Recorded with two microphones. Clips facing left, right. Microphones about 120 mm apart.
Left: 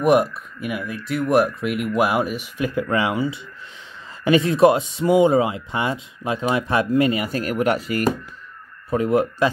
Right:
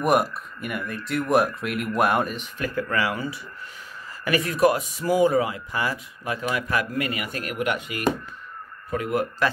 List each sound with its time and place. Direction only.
0.0 s speech: centre (ahead or behind); by 9.5 s 25° left (ahead or behind)